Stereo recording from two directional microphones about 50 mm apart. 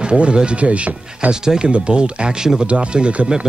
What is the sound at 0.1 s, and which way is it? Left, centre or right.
Speech, centre.